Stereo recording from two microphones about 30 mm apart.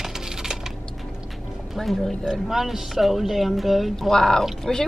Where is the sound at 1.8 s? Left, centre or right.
Centre.